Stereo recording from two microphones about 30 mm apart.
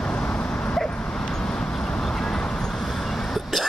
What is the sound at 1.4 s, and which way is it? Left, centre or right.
Vehicle, left.